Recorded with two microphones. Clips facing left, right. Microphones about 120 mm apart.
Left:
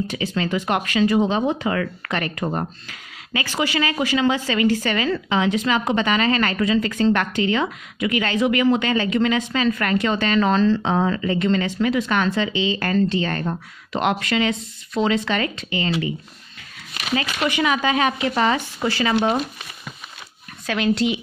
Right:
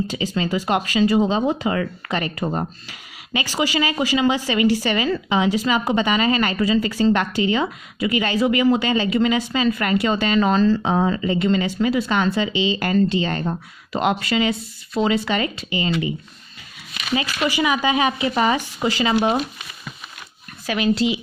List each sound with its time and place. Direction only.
0.0 s a woman's voice: 15° right (ahead or behind)
17.1 s a woman's voice: 10° right (ahead or behind)
20.6 s speech: 5° right (ahead or behind)